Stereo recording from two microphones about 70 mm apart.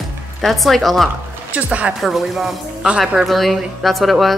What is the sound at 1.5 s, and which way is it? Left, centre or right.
Speech, centre.